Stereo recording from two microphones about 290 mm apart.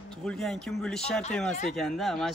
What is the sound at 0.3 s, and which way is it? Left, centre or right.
Speech, centre.